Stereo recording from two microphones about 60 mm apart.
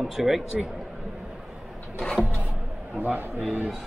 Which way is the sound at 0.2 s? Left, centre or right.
Centre.